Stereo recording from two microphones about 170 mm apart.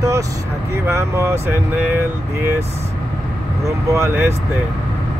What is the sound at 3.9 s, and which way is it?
Speech, 15° right (ahead or behind).